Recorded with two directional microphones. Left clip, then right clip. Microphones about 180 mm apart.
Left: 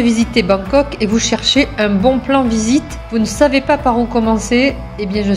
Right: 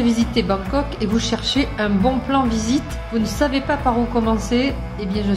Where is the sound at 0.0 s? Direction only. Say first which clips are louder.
Left 5 dB; 20° left (ahead or behind).